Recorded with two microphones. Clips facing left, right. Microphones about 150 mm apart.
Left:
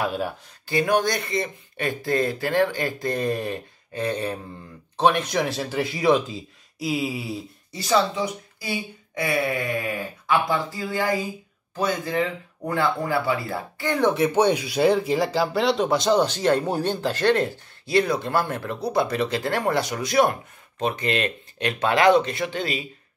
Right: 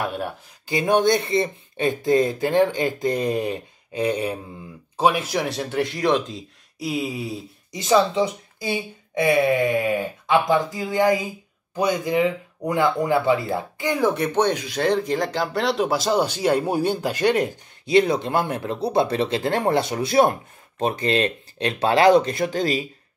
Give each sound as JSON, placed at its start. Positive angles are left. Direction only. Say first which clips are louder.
{"t": 0.0, "sound": "speech", "louder": "left 1 dB", "side_deg": 0}
{"t": 0.7, "sound": "speech", "louder": "right 3 dB", "side_deg": -20}
{"t": 7.7, "sound": "speech", "louder": "right 3 dB", "side_deg": -20}
{"t": 14.0, "sound": "speech", "louder": "left 2 dB", "side_deg": 0}